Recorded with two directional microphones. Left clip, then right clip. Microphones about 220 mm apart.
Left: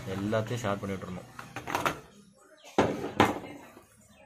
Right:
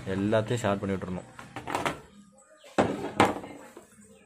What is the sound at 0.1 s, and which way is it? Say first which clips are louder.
Speech: right 5 dB; 30° right (ahead or behind).